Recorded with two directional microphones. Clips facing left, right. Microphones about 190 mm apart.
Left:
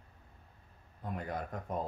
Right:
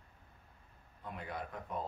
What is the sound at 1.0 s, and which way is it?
Speech, 45° left (ahead or behind).